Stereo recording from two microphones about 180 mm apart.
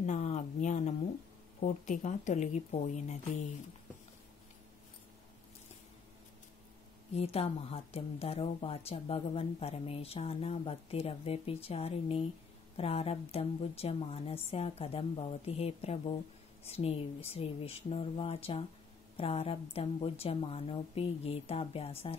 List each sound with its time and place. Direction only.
0.0 s a sound: 40° left (ahead or behind)
1.6 s a woman's voice: 40° left (ahead or behind)
7.2 s a woman's voice: 35° left (ahead or behind)